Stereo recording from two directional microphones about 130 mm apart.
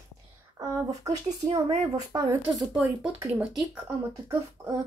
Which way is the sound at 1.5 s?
30° right (ahead or behind).